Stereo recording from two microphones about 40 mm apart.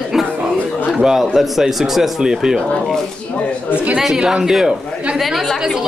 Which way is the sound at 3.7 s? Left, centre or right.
Right.